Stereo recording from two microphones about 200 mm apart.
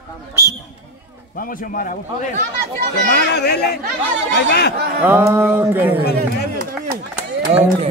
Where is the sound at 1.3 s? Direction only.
45° left (ahead or behind).